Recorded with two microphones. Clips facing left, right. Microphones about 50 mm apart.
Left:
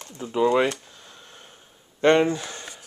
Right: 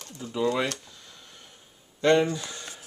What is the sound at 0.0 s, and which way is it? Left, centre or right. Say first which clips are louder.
Speech: left 6 dB; left.